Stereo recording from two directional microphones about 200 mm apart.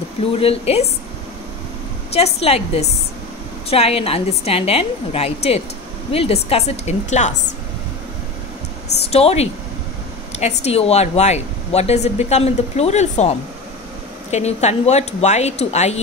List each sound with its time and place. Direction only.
0.2 s a woman's voice: 30° left (ahead or behind)
2.1 s a woman's voice: 30° left (ahead or behind)
9.1 s speech: 30° left (ahead or behind)